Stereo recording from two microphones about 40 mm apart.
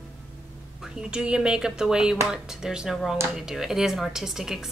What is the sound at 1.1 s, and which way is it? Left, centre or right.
A woman's voice, right.